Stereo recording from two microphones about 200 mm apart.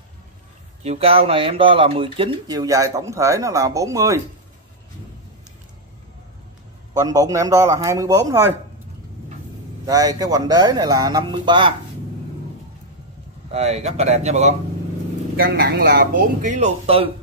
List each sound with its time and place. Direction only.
0.8 s speech: 30° right (ahead or behind)
6.9 s a man's voice: 15° right (ahead or behind)
9.8 s speech: 15° right (ahead or behind)
13.5 s speech: 30° right (ahead or behind)
15.3 s speech: 50° right (ahead or behind); by 17.1 s 30° right (ahead or behind)